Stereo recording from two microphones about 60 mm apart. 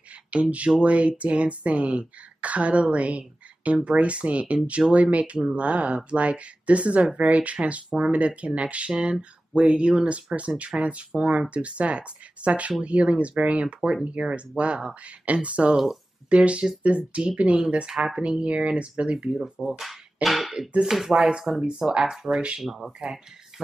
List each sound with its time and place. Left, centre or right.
0.3 s speech: right
15.7 s speech: centre
16.3 s speech: right
20.2 s speech: centre